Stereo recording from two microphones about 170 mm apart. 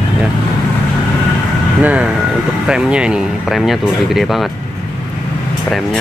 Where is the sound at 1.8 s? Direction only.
10° right (ahead or behind).